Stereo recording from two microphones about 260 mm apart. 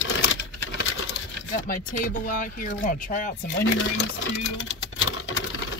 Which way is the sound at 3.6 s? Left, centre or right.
Left.